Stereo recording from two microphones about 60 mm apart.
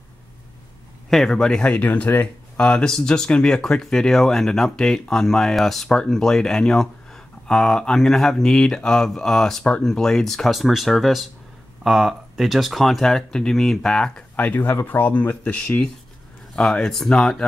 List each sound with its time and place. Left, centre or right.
1.1 s speech: centre
1.6 s speech: left
2.6 s speech: centre
14.3 s speech: left
16.5 s speech: centre